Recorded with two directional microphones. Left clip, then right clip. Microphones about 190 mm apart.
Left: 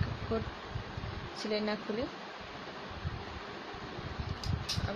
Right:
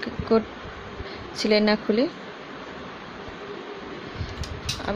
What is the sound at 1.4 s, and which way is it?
Speech, 50° right (ahead or behind).